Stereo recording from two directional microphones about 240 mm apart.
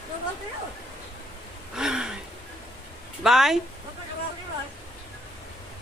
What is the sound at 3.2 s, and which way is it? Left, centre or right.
Speech, centre.